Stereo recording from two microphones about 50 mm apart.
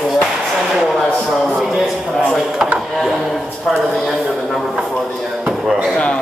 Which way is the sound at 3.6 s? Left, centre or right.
Centre.